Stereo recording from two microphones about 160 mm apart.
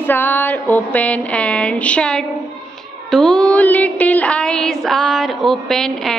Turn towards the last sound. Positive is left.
turn(degrees=5)  # may be behind; listen again after turning